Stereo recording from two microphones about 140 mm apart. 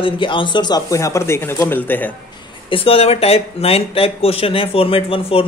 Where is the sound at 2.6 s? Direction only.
40° left (ahead or behind).